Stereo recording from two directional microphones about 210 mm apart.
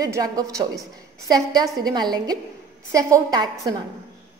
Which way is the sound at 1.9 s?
20° right (ahead or behind).